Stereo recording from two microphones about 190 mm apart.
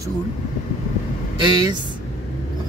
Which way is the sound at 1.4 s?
20° right (ahead or behind).